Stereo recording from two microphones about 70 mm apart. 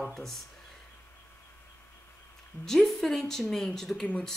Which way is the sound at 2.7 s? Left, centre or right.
Centre.